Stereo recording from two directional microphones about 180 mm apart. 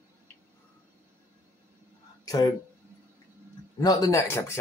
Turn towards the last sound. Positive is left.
turn(degrees=15)  # may be behind; listen again after turning